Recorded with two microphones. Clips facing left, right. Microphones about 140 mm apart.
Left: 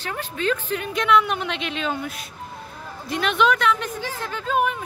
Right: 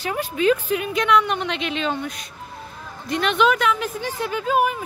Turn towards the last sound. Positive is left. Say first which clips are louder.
# right 2 dB
turn(degrees=-5)  # may be behind; listen again after turning